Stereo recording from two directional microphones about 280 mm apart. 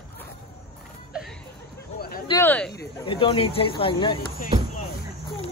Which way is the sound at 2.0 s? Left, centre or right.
Left.